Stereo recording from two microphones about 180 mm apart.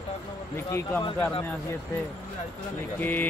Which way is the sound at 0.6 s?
15° left (ahead or behind).